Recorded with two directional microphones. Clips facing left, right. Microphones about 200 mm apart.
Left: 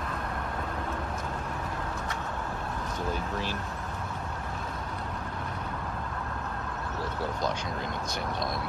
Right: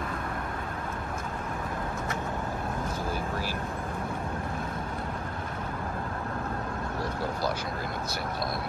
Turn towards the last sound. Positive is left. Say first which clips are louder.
# right 1 dB
turn(degrees=-10)  # may be behind; listen again after turning